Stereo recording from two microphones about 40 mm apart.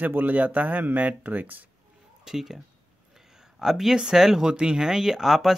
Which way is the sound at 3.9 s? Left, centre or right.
Right.